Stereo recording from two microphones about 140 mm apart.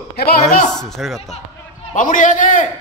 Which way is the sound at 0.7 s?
5° left (ahead or behind).